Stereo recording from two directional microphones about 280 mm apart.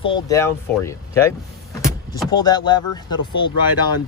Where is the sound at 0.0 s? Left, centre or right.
Centre.